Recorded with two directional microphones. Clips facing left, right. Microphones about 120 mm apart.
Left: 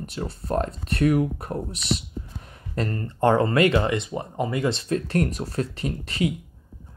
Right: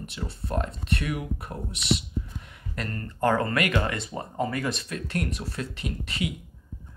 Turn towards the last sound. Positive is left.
turn(degrees=35)  # may be behind; listen again after turning